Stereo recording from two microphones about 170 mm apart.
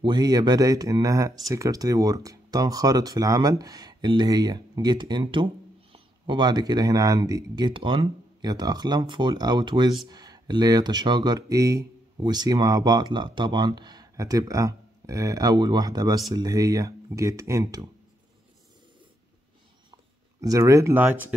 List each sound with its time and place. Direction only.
0.0 s speech: 25° right (ahead or behind)
19.9 s speech: 20° right (ahead or behind)